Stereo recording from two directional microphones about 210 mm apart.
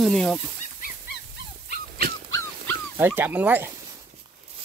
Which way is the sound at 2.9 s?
10° right (ahead or behind).